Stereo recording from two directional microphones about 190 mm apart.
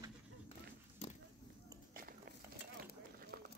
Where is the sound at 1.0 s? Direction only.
35° left (ahead or behind).